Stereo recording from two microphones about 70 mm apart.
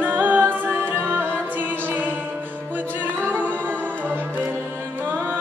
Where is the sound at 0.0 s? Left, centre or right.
Right.